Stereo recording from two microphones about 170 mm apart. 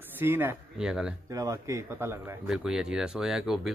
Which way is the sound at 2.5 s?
5° right (ahead or behind).